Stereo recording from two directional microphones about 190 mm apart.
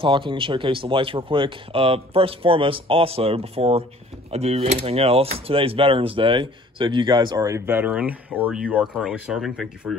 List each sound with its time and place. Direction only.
0.0 s speech: 25° right (ahead or behind); by 9.9 s centre (ahead or behind)